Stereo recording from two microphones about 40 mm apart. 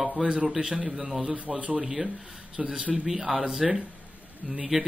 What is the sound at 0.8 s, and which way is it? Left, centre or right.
Speech, centre.